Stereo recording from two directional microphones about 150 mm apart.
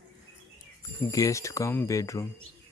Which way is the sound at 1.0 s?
20° left (ahead or behind).